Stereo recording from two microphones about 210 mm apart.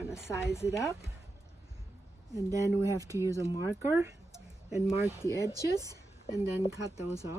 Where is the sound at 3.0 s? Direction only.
15° right (ahead or behind).